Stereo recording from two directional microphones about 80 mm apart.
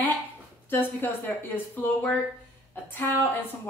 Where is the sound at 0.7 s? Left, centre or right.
Left.